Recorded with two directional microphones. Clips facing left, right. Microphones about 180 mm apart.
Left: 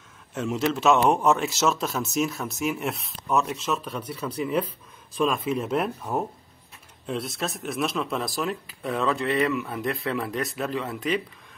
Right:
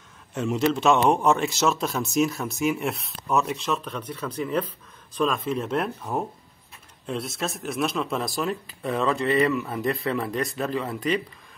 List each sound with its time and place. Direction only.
0.3 s a man's voice: centre (ahead or behind)